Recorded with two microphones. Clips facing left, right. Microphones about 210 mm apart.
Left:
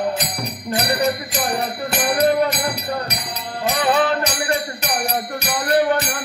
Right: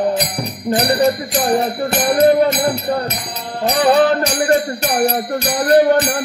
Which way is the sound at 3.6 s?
35° right (ahead or behind).